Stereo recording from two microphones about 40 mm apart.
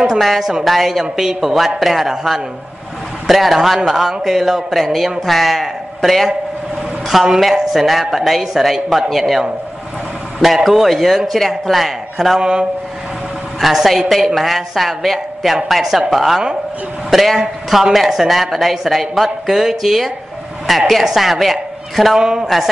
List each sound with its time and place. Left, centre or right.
0.0 s a woman's voice: centre
10.4 s a woman's voice: centre
11.3 s a woman's voice: centre
12.4 s speech: right
13.6 s a woman's voice: centre